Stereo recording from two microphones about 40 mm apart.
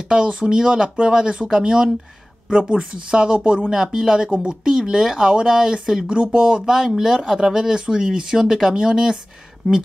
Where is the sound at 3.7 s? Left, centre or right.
Centre.